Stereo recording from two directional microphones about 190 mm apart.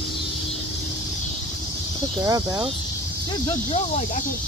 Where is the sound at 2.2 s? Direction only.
20° right (ahead or behind).